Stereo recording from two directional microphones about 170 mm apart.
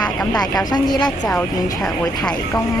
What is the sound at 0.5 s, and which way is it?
Speech, 25° left (ahead or behind).